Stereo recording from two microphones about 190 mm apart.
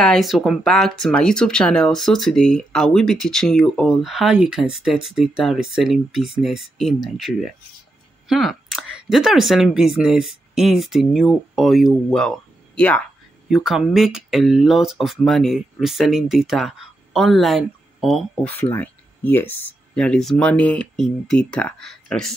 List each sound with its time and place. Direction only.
0.0 s speech: centre (ahead or behind)